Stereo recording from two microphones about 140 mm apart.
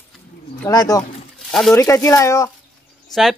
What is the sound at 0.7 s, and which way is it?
Speech, 25° left (ahead or behind).